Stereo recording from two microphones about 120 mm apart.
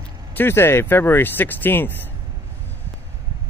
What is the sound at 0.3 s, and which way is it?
Speech, 20° left (ahead or behind).